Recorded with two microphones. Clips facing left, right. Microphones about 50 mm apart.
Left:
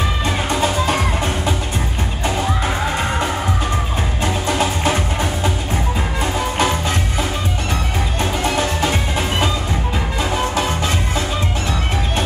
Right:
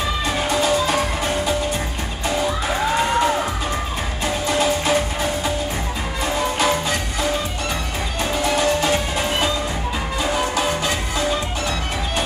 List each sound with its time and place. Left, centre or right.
0.6 s music: left
6.6 s music: centre